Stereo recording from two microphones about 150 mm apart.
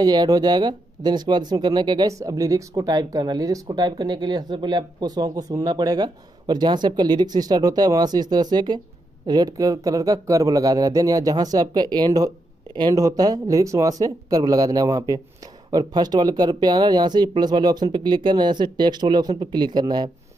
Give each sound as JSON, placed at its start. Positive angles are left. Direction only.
{"t": 0.0, "sound": "speech", "side_deg": -25}